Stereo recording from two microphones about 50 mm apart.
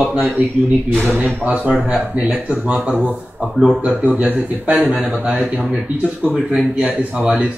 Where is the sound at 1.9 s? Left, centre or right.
Right.